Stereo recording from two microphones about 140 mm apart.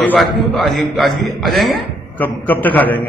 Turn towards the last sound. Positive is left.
turn(degrees=10)  # may be behind; listen again after turning